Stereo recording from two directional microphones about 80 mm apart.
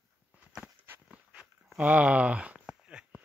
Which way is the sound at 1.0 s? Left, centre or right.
Centre.